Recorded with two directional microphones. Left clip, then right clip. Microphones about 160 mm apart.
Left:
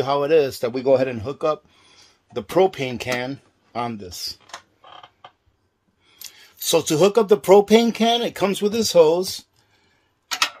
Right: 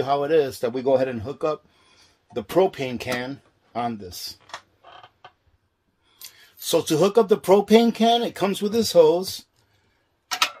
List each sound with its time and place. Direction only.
0.0 s a man's voice: 40° left (ahead or behind)
6.2 s speech: 45° left (ahead or behind)